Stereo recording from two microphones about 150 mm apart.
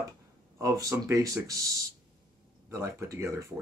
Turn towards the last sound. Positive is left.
turn(degrees=-20)  # may be behind; listen again after turning